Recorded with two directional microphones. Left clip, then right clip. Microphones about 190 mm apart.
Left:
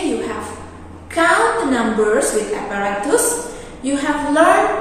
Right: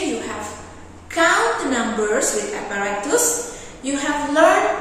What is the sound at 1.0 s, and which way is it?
A woman's voice, centre (ahead or behind).